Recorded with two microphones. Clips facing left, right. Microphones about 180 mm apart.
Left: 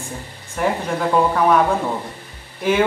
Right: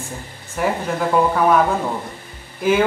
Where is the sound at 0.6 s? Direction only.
Centre (ahead or behind).